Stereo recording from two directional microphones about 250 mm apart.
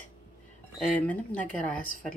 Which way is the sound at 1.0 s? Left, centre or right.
Centre.